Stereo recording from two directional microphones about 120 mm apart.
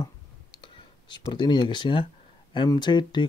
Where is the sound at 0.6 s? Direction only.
40° left (ahead or behind).